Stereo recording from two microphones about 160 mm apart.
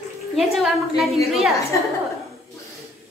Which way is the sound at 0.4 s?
Centre (ahead or behind).